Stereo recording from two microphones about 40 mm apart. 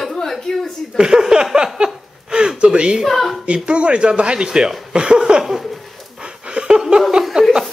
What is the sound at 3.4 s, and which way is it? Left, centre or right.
Speech, right.